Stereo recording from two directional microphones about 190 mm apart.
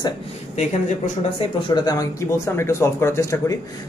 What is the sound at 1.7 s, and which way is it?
Speech, 20° left (ahead or behind).